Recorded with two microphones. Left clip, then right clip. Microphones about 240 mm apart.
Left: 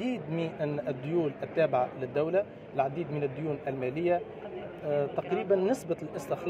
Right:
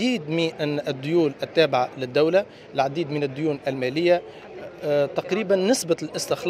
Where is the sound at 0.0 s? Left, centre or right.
Right.